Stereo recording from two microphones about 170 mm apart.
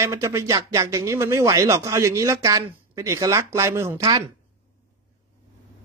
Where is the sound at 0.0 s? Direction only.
15° right (ahead or behind).